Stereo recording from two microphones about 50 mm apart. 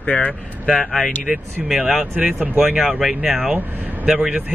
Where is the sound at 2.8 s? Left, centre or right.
Centre.